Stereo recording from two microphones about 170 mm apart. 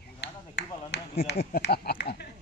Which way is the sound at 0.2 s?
90° left.